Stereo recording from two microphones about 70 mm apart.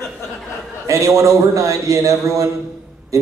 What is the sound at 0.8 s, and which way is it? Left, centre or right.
A man's voice, right.